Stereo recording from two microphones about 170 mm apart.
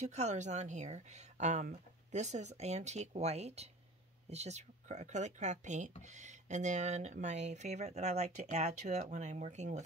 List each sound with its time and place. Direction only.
0.1 s speech: 40° right (ahead or behind)